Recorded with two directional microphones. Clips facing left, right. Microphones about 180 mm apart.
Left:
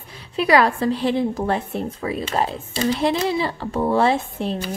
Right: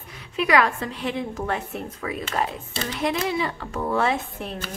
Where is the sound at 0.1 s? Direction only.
35° left (ahead or behind).